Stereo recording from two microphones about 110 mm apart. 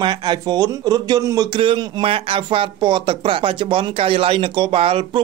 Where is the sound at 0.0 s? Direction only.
45° right (ahead or behind).